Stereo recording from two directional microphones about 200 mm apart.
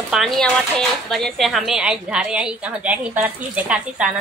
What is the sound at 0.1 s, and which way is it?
A woman's voice, centre (ahead or behind).